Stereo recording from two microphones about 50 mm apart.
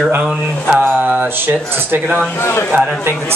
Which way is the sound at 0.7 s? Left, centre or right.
Right.